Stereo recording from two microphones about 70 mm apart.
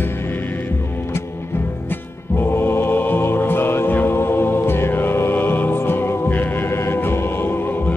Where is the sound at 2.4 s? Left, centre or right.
Left.